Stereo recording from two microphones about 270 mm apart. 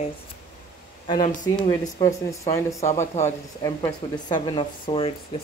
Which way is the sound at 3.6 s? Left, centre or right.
Centre.